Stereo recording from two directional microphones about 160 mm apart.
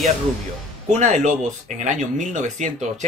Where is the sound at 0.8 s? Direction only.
45° right (ahead or behind).